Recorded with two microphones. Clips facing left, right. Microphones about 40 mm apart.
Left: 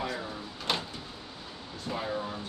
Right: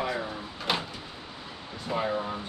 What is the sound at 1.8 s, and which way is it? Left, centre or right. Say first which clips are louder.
Speech: right 4 dB; right.